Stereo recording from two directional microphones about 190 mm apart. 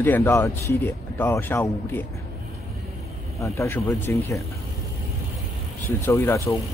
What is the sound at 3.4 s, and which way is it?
Speech, 15° left (ahead or behind).